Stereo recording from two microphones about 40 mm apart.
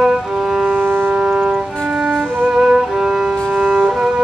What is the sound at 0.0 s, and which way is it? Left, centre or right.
Music, centre.